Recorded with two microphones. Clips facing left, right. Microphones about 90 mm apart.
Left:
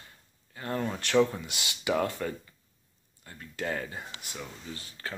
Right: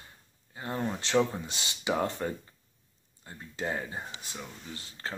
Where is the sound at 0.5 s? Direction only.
20° right (ahead or behind).